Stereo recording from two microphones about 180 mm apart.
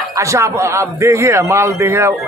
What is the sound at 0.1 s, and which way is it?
A man's voice, 15° right (ahead or behind).